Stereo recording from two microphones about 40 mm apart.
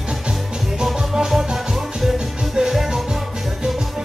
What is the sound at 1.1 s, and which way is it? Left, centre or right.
Music, centre.